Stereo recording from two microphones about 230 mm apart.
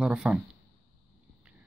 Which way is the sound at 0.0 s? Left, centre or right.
Centre.